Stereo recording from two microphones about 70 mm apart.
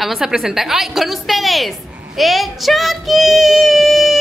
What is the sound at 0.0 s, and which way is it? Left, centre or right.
A woman's voice, centre.